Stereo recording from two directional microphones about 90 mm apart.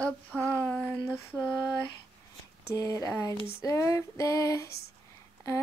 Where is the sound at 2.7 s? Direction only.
40° left (ahead or behind).